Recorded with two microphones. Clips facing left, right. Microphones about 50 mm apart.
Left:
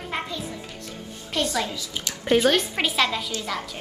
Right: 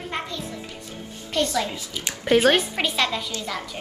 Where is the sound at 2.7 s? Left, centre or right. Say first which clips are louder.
Left 1 dB; centre.